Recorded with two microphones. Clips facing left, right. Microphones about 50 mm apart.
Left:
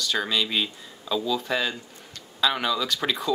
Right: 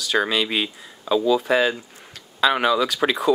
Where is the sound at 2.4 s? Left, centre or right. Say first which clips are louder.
Right 6 dB; right.